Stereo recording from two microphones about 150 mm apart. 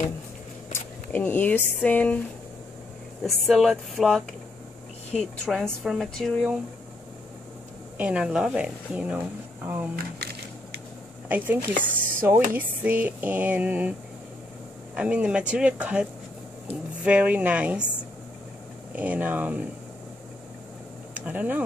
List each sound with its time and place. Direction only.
0.7 s speech: 10° left (ahead or behind)
3.3 s speech: centre (ahead or behind)
8.0 s speech: 5° right (ahead or behind)
9.9 s music: 90° right
11.2 s speech: 10° right (ahead or behind)
15.0 s speech: 10° right (ahead or behind)
18.9 s speech: 10° right (ahead or behind)
21.1 s speech: 10° right (ahead or behind)